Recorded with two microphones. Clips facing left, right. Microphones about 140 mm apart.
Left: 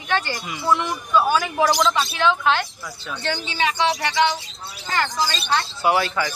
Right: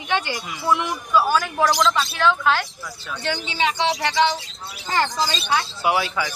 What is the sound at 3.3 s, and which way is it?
Speech, 15° right (ahead or behind).